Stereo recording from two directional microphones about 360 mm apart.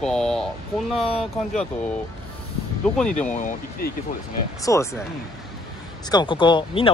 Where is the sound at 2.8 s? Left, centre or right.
Centre.